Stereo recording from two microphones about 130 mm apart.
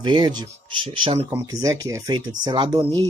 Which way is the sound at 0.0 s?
35° right (ahead or behind).